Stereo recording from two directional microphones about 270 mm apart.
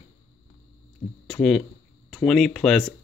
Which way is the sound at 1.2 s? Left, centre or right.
Centre.